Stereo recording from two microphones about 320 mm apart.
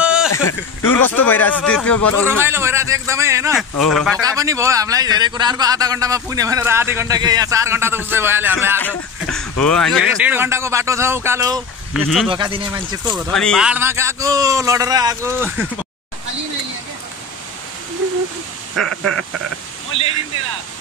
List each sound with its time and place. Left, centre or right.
0.0 s a sound: centre
0.3 s a sound: left
1.0 s speech: centre
2.2 s a man's voice: centre
4.2 s a man's voice: centre
8.7 s a man's voice: centre
12.3 s a man's voice: centre
13.3 s a man's voice: centre